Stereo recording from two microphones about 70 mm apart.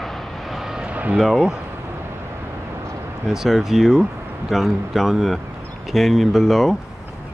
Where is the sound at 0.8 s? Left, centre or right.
Right.